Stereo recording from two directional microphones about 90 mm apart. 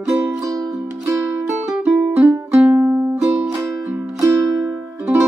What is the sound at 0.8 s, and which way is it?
Music, 35° right (ahead or behind).